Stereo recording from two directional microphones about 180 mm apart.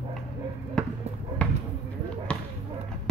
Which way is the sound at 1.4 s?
5° left (ahead or behind).